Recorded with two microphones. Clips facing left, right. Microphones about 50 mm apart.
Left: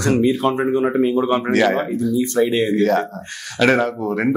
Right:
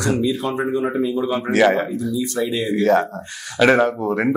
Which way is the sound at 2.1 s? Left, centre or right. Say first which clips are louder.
Left 6 dB; left.